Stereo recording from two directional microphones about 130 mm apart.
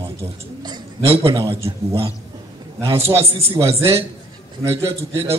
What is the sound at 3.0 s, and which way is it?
A man's voice, 20° right (ahead or behind).